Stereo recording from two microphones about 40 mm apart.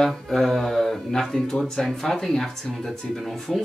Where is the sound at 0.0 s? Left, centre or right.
Centre.